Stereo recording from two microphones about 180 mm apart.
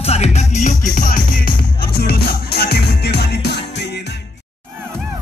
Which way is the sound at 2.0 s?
60° left (ahead or behind).